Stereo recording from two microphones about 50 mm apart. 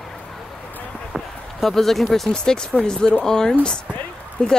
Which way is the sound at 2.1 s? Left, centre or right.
Centre.